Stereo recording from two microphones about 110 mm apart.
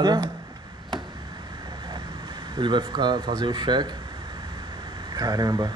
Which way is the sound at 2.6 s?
45° right (ahead or behind).